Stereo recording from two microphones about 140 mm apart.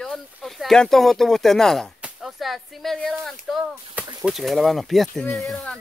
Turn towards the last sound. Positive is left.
turn(degrees=5)  # may be behind; listen again after turning